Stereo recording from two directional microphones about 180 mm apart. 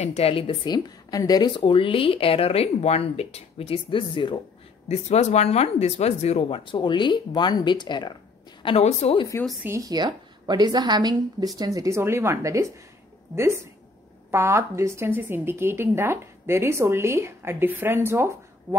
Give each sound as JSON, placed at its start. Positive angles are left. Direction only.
{"t": 0.0, "sound": "a woman's voice", "side_deg": 35}
{"t": 4.8, "sound": "speech", "side_deg": 40}
{"t": 8.6, "sound": "a woman's voice", "side_deg": 35}
{"t": 9.7, "sound": "a woman's voice", "side_deg": -20}